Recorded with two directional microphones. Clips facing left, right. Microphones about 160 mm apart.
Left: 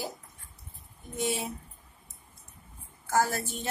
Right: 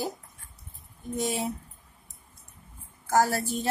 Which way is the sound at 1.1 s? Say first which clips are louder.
Right 2 dB; 40° right (ahead or behind).